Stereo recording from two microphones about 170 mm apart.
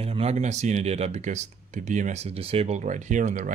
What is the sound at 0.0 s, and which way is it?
Speech, 35° right (ahead or behind).